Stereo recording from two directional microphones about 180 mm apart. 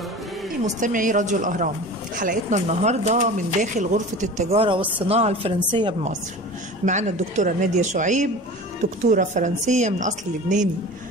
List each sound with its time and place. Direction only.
0.7 s a woman's voice: 45° right (ahead or behind); by 5.9 s 25° right (ahead or behind)
6.9 s a woman's voice: 40° right (ahead or behind)